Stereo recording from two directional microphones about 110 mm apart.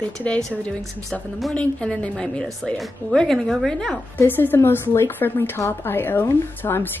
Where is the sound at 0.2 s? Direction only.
10° left (ahead or behind).